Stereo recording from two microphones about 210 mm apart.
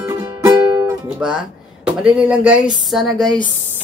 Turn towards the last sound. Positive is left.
turn(degrees=0)  # may be behind; listen again after turning